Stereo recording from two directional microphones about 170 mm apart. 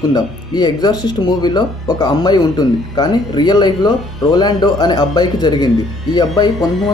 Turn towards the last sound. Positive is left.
turn(degrees=25)  # may be behind; listen again after turning